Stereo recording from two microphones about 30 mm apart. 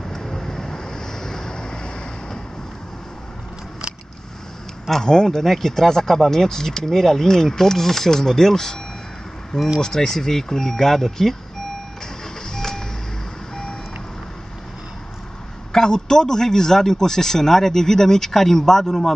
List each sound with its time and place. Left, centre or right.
0.0 s vehicle: centre
5.0 s speech: left
5.4 s speech: centre
9.8 s speech: centre
12.4 s vehicle: left
15.7 s speech: centre